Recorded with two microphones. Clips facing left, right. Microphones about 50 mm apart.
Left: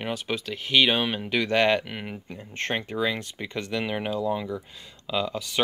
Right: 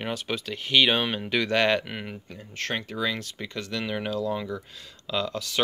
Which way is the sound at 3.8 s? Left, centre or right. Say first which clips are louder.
Right 1 dB; centre.